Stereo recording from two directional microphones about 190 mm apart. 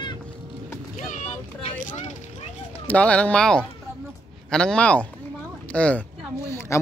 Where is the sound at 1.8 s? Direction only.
40° left (ahead or behind).